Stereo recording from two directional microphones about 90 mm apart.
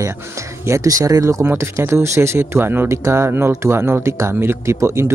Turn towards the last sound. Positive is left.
turn(degrees=-30)  # may be behind; listen again after turning